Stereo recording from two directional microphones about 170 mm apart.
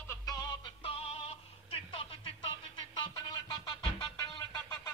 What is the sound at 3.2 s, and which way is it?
Music, 25° left (ahead or behind).